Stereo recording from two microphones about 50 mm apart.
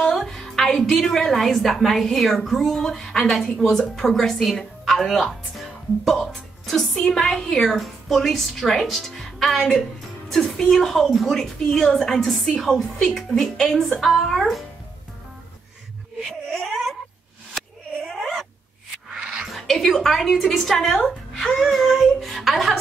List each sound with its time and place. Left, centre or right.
0.1 s music: centre
1.0 s a woman's voice: centre
6.2 s music: centre
7.0 s a woman's voice: centre
10.7 s a woman's voice: centre
16.5 s cat: centre
17.6 s a sound: centre
19.1 s a sound: centre
19.5 s a woman's voice: centre